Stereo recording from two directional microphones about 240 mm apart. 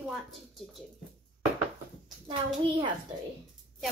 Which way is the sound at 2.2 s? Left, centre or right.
Right.